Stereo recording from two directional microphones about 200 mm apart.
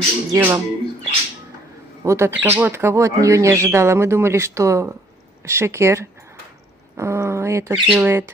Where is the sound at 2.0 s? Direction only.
15° right (ahead or behind).